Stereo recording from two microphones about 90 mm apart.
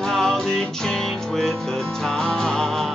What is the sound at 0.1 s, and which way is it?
Music, 5° left (ahead or behind).